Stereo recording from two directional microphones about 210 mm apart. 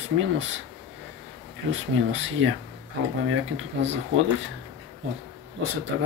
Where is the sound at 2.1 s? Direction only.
65° right (ahead or behind).